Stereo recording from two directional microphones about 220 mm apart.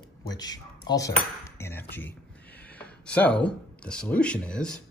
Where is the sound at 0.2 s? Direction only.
15° left (ahead or behind).